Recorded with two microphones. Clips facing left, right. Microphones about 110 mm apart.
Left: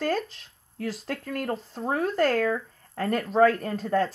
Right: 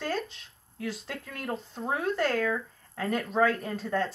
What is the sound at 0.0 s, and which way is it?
Speech, centre (ahead or behind).